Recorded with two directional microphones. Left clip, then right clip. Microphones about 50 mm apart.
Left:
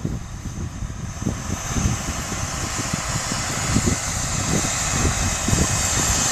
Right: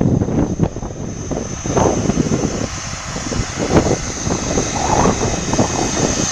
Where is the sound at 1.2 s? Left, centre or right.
Centre.